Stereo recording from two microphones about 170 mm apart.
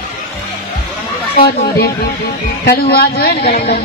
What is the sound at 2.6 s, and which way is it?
Speech, 65° left (ahead or behind).